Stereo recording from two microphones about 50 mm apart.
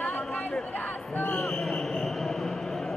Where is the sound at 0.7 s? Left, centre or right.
Left.